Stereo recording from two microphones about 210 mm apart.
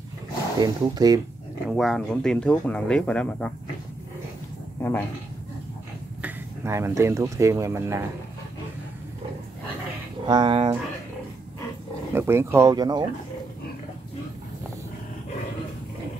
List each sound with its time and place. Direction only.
0.6 s speech: 15° right (ahead or behind)
1.7 s speech: centre (ahead or behind)
6.2 s speech: 10° right (ahead or behind)
10.2 s speech: 20° right (ahead or behind)
12.1 s speech: 10° right (ahead or behind)